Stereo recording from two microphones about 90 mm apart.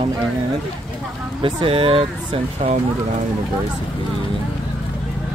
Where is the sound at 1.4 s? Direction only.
85° right.